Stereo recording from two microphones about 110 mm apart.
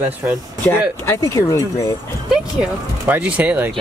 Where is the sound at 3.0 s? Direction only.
15° right (ahead or behind).